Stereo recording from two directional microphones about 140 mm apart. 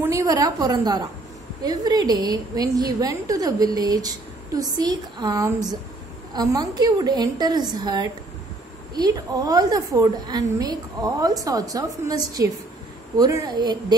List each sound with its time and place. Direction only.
0.0 s a woman's voice: 25° right (ahead or behind)